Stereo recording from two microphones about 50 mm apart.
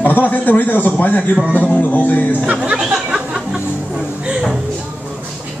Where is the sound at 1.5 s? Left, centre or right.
Left.